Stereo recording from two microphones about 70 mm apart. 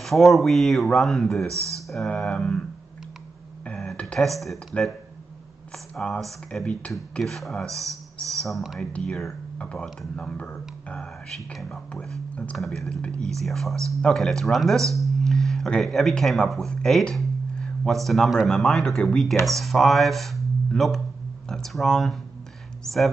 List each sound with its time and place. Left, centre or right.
0.0 s speech: centre
3.6 s a sound: centre
3.9 s speech: centre
4.7 s speech: left
6.0 s speech: centre
9.6 s speech: centre
13.0 s speech: centre
13.3 s speech: centre